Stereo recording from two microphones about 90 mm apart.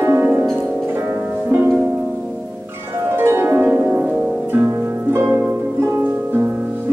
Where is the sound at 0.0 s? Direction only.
25° right (ahead or behind).